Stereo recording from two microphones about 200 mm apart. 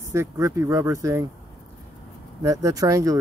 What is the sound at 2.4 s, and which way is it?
Speech, 15° right (ahead or behind).